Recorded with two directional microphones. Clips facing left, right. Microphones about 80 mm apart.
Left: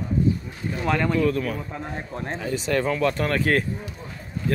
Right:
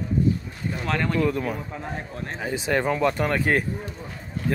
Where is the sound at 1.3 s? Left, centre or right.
Right.